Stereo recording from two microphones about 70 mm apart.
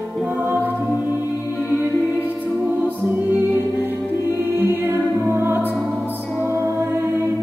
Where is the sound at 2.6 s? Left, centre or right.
Right.